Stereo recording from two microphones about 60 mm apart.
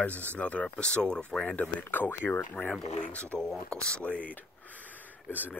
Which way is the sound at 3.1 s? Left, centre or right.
Left.